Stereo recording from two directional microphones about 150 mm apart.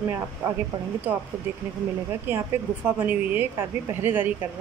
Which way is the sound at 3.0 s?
10° right (ahead or behind).